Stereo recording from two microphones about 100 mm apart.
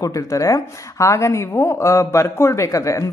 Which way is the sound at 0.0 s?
35° left (ahead or behind).